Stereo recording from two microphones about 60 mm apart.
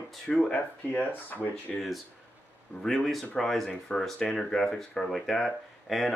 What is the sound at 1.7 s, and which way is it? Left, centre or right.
Speech, centre.